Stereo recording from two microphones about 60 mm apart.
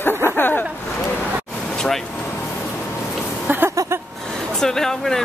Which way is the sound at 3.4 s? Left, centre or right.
Right.